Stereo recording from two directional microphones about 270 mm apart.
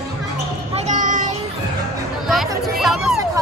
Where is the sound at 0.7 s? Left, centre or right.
Right.